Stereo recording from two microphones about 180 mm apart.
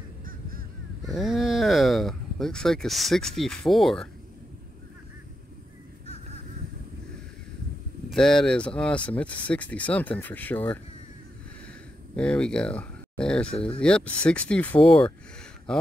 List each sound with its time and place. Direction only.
0.2 s honk: 55° right (ahead or behind)
1.0 s speech: centre (ahead or behind)
8.1 s speech: 5° left (ahead or behind)
12.2 s speech: 5° left (ahead or behind)